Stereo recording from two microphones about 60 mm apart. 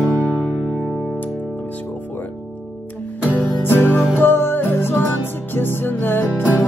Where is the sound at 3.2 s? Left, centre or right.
Left.